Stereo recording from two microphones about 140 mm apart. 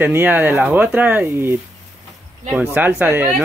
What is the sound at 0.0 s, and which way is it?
Speech, 15° right (ahead or behind).